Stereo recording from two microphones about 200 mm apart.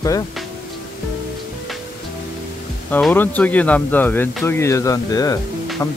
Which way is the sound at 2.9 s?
10° left (ahead or behind).